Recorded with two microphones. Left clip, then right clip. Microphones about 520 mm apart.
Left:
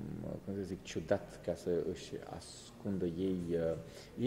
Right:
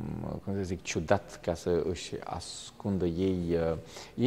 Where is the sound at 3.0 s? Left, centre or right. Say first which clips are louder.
Right 7 dB; right.